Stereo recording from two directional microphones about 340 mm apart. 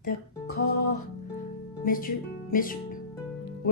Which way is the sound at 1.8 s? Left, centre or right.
Left.